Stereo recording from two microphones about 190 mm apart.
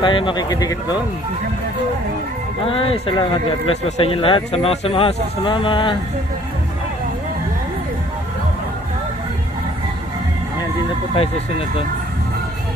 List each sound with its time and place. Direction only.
0.0 s speech: 25° left (ahead or behind)
2.6 s speech: 30° left (ahead or behind)